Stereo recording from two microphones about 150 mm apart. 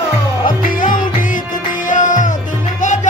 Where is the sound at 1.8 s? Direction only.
60° left (ahead or behind).